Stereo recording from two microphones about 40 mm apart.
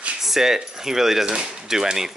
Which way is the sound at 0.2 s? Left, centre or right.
Centre.